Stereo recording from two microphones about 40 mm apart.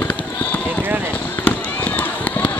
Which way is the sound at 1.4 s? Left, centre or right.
Left.